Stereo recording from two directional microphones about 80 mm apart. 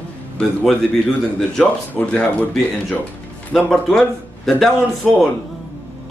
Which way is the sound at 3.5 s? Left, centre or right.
Centre.